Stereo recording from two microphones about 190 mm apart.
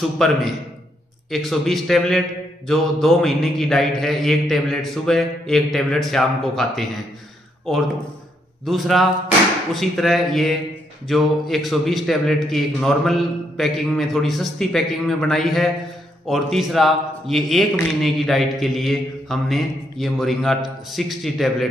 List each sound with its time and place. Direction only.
0.2 s a man's voice: centre (ahead or behind)
8.6 s a man's voice: centre (ahead or behind)